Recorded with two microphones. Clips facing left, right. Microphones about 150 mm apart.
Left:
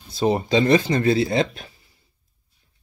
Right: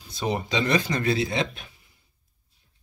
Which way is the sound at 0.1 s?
30° left (ahead or behind).